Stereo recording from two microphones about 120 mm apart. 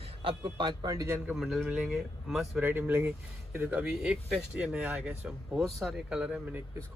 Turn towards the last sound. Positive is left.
turn(degrees=-15)  # may be behind; listen again after turning